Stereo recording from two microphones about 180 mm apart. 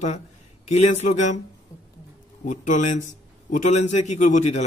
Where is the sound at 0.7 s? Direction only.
40° left (ahead or behind).